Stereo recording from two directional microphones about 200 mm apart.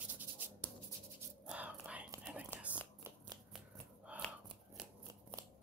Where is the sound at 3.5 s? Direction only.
5° right (ahead or behind).